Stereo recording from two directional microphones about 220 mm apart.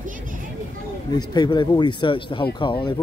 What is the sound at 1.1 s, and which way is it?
Speech, 20° left (ahead or behind).